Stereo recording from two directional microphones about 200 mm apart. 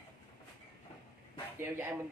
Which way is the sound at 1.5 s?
10° right (ahead or behind).